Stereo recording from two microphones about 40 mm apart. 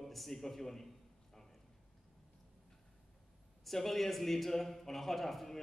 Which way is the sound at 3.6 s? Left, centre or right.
Centre.